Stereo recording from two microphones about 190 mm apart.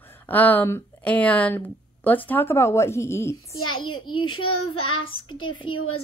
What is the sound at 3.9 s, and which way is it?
Speech, 90° left.